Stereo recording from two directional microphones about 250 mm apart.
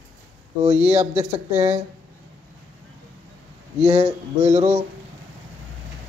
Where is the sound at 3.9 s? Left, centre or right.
Right.